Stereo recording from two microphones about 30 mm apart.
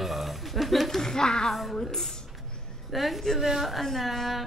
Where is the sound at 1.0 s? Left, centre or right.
Left.